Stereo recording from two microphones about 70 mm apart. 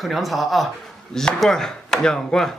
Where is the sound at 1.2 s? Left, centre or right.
Centre.